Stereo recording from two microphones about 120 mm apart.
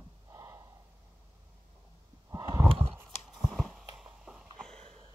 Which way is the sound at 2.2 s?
25° right (ahead or behind).